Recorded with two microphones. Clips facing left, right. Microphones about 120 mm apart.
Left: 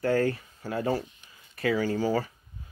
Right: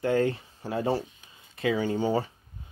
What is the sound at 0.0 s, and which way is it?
Speech, 20° right (ahead or behind).